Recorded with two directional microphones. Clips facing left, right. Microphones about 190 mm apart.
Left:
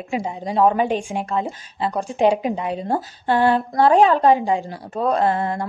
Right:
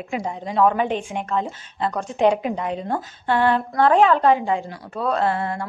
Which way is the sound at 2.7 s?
35° left (ahead or behind).